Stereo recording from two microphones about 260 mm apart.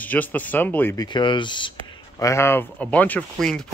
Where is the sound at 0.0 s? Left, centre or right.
Centre.